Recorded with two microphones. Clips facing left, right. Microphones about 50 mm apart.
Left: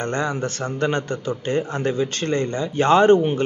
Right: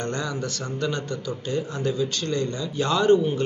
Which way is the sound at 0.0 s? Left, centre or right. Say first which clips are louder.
Left 5 dB; left.